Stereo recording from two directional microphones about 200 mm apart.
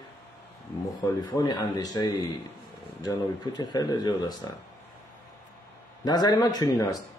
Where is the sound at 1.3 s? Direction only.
20° left (ahead or behind).